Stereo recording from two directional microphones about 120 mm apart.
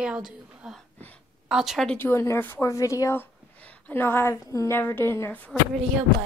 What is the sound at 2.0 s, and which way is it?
Speech, 20° left (ahead or behind).